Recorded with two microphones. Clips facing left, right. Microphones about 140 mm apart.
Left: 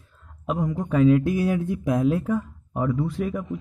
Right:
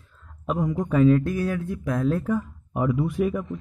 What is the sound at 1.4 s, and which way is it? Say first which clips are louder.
Speech: left 3 dB; 15° left (ahead or behind).